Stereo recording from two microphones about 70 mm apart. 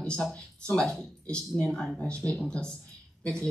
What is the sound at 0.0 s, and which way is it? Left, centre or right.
Speech, centre.